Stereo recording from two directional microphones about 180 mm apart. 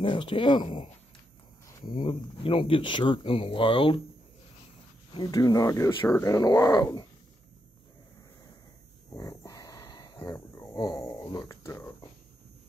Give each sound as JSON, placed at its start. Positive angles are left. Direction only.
{"t": 0.0, "sound": "speech", "side_deg": 30}
{"t": 5.1, "sound": "speech", "side_deg": 20}
{"t": 9.3, "sound": "a sound", "side_deg": 20}
{"t": 10.2, "sound": "speech", "side_deg": 15}